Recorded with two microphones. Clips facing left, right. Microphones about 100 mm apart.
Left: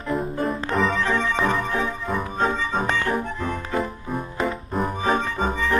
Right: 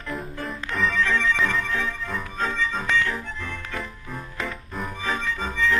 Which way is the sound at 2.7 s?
40° left (ahead or behind).